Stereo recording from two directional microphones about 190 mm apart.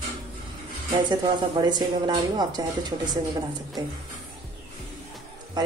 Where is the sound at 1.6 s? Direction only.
20° right (ahead or behind).